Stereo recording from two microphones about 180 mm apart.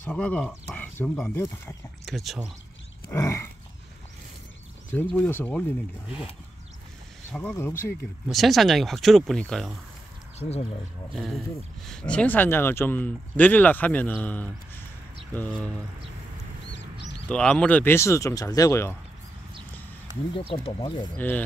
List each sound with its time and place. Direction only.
0.0 s speech: 5° left (ahead or behind)
0.7 s a sound: 10° left (ahead or behind)
1.4 s speech: 15° left (ahead or behind)
2.0 s speech: centre (ahead or behind)
3.1 s a sound: 15° left (ahead or behind)
4.9 s speech: 10° left (ahead or behind)
7.3 s speech: 10° left (ahead or behind)
8.3 s speech: centre (ahead or behind)
11.1 s speech: centre (ahead or behind)
17.3 s speech: 5° left (ahead or behind)
20.3 s speech: 30° left (ahead or behind)